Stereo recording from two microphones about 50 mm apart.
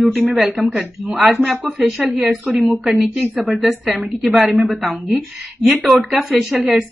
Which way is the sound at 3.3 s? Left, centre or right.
Right.